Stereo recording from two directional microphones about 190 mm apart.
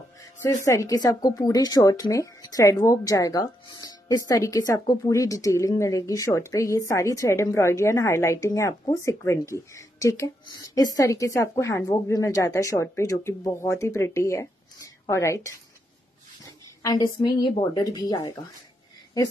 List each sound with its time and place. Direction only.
0.2 s music: 15° left (ahead or behind)
0.7 s speech: 15° left (ahead or behind)
16.8 s speech: 20° left (ahead or behind)